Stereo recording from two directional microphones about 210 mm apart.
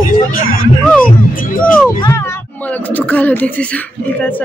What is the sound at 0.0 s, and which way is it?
Music, 40° left (ahead or behind).